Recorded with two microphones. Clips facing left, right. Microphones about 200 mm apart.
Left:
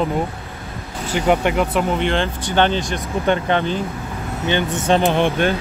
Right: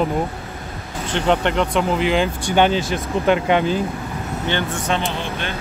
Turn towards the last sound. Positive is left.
turn(degrees=50)  # may be behind; listen again after turning